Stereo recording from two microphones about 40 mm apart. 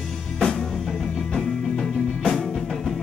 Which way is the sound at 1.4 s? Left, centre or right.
Centre.